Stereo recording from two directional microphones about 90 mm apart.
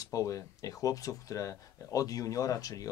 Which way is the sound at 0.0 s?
40° left (ahead or behind).